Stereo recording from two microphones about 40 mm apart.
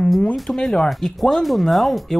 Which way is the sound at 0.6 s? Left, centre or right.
Centre.